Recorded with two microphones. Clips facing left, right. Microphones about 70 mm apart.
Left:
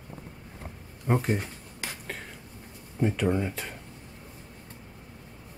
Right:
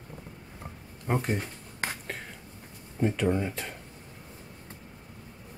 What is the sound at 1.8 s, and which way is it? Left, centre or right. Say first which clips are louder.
Finger snapping: right 5 dB; right.